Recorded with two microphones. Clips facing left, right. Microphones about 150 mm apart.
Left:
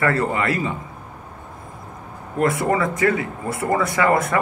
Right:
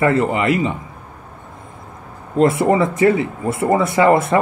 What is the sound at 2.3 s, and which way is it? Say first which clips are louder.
A man's voice: right 5 dB; 25° right (ahead or behind).